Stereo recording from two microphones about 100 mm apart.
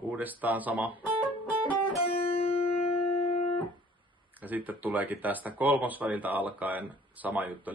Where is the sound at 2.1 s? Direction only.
70° left (ahead or behind).